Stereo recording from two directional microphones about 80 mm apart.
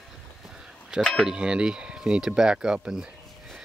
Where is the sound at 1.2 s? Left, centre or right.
Centre.